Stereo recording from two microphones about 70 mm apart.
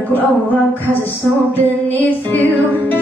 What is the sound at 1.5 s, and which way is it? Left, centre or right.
Music, left.